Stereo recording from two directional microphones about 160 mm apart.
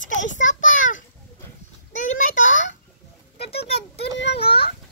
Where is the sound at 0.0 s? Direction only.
50° left (ahead or behind).